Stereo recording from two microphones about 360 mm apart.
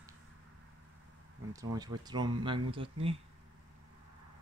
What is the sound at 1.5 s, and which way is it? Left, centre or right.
Speech, centre.